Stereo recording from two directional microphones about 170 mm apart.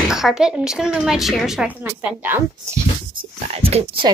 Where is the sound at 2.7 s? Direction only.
35° right (ahead or behind).